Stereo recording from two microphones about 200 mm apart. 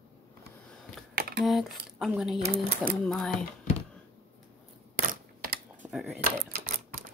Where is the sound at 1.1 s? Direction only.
50° right (ahead or behind).